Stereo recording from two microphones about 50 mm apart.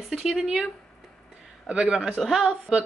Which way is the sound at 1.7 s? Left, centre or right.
Centre.